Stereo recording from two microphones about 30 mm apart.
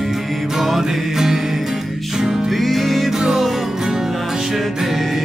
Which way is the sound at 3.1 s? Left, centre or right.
Centre.